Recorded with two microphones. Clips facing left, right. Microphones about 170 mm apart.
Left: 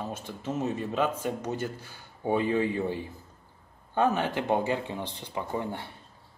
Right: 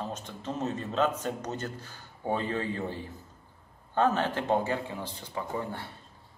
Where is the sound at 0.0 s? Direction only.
10° left (ahead or behind).